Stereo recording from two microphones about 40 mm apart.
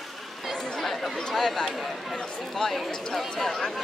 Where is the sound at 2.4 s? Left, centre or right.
Centre.